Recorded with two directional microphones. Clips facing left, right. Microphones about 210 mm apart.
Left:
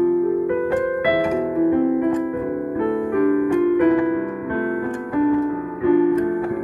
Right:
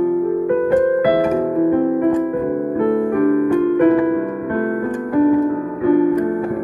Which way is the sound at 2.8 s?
50° right (ahead or behind).